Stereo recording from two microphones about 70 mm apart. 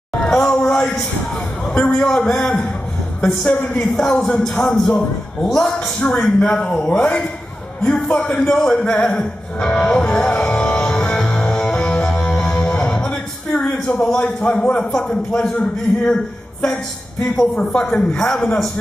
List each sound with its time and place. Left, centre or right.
0.2 s a sound: centre
1.7 s a man's voice: centre
6.5 s a man's voice: left
7.0 s a man's voice: centre
9.2 s music: centre
13.1 s a sound: centre
14.2 s a man's voice: centre
14.8 s a man's voice: centre